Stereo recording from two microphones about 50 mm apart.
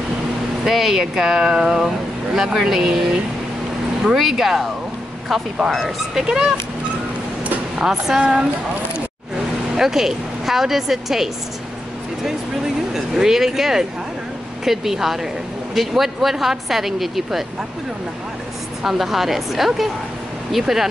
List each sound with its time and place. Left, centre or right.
0.7 s a woman's voice: centre
4.0 s a woman's voice: centre
7.8 s a woman's voice: centre
9.8 s a woman's voice: centre
12.9 s a woman's voice: centre
18.8 s a woman's voice: centre